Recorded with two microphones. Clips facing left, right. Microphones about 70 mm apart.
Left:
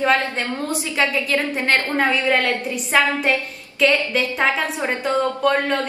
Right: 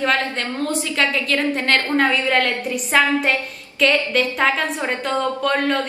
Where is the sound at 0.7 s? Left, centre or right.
Centre.